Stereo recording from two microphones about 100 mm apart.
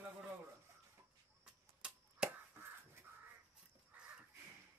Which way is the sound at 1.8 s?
10° right (ahead or behind).